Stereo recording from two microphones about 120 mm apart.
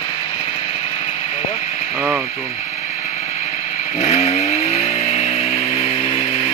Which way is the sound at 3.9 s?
60° left (ahead or behind).